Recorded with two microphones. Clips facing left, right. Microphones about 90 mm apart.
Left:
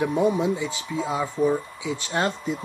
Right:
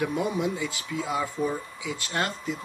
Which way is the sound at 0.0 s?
20° left (ahead or behind).